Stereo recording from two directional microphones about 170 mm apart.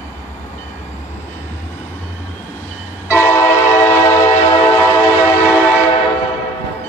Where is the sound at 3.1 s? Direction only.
15° left (ahead or behind).